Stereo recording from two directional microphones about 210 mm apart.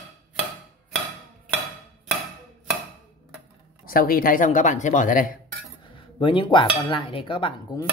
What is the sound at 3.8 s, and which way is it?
Speech, 45° left (ahead or behind).